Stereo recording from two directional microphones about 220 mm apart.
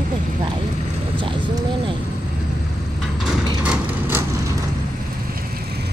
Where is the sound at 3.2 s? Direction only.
5° right (ahead or behind).